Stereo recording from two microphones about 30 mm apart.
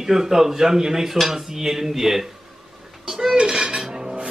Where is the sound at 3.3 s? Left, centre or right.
Right.